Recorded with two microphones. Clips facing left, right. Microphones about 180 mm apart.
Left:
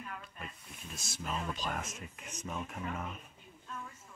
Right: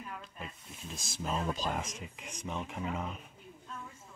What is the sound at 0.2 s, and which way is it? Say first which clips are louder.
Snake: right 2 dB; 25° right (ahead or behind).